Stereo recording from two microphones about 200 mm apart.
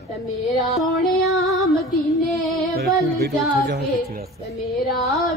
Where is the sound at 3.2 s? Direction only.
55° right (ahead or behind).